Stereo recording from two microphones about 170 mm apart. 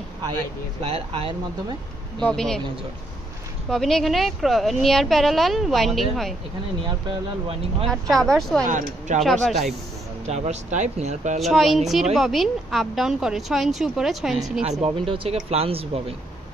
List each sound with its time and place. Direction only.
0.8 s speech: 35° right (ahead or behind)
2.1 s a woman's voice: 5° left (ahead or behind)
3.7 s a woman's voice: centre (ahead or behind)
7.9 s a woman's voice: centre (ahead or behind)
8.6 s speech: 45° right (ahead or behind)
9.2 s a woman's voice: centre (ahead or behind)
10.2 s speech: 40° right (ahead or behind)
11.4 s a woman's voice: centre (ahead or behind)
14.6 s speech: 35° right (ahead or behind)